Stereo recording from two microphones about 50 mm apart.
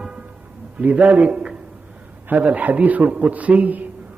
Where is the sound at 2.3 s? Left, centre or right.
Right.